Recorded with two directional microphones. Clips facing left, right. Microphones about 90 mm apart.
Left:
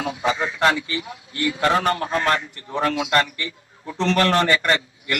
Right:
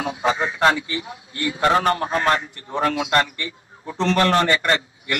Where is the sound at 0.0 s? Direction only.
20° right (ahead or behind).